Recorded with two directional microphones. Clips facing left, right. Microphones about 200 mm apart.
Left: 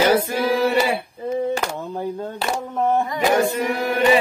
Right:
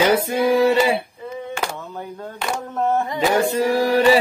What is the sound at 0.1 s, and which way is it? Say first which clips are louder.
Singing: right 2 dB; 25° right (ahead or behind).